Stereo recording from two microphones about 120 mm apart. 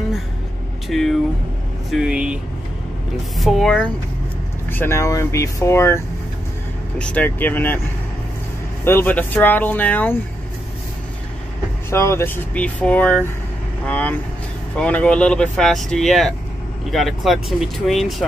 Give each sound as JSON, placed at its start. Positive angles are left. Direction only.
{"t": 0.8, "sound": "speech", "side_deg": 5}
{"t": 3.3, "sound": "speech", "side_deg": 0}
{"t": 4.6, "sound": "speech", "side_deg": 20}
{"t": 7.0, "sound": "speech", "side_deg": 15}
{"t": 8.8, "sound": "speech", "side_deg": 15}
{"t": 11.9, "sound": "speech", "side_deg": 20}
{"t": 12.5, "sound": "speech", "side_deg": 10}